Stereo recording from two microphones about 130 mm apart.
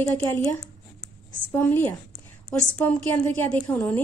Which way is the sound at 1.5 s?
15° left (ahead or behind).